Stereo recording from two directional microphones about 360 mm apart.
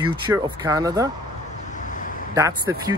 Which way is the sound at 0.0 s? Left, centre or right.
Centre.